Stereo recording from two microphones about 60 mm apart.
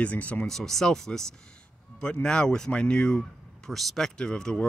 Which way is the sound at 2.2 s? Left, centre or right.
Centre.